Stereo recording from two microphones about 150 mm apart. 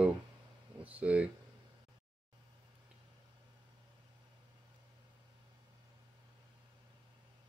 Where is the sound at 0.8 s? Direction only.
10° right (ahead or behind).